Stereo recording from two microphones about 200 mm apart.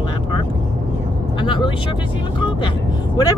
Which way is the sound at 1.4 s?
25° left (ahead or behind).